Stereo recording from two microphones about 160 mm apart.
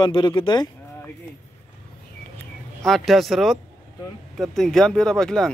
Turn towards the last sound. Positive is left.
turn(degrees=5)  # may be behind; listen again after turning